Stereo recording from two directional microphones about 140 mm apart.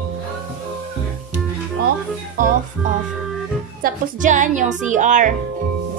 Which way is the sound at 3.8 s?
65° right (ahead or behind).